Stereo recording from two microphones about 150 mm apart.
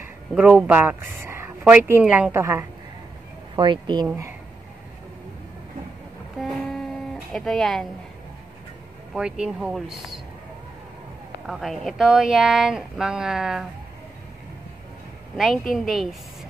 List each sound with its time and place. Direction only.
0.3 s speech: 5° right (ahead or behind)
3.5 s speech: 30° right (ahead or behind)
7.3 s speech: 5° left (ahead or behind)
9.1 s speech: 5° right (ahead or behind)
11.4 s speech: centre (ahead or behind)
15.3 s speech: centre (ahead or behind)